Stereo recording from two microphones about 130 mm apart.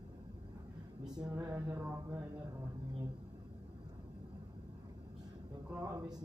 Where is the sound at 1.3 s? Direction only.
20° right (ahead or behind).